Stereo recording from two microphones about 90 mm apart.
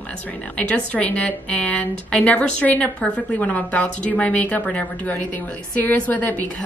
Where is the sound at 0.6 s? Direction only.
15° left (ahead or behind).